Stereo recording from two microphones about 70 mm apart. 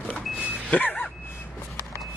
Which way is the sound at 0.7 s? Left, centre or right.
Left.